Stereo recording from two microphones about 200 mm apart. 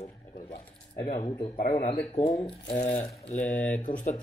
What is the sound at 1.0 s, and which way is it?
Speech, 30° left (ahead or behind).